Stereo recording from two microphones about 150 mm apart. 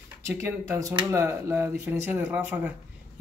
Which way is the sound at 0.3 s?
15° right (ahead or behind).